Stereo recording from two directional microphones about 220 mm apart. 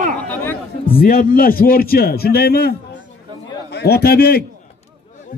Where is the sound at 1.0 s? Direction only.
40° left (ahead or behind).